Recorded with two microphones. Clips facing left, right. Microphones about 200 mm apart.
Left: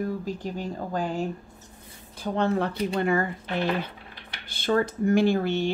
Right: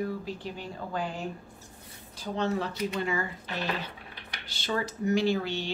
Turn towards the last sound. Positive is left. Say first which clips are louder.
# left 5 dB
turn(degrees=50)  # may be behind; listen again after turning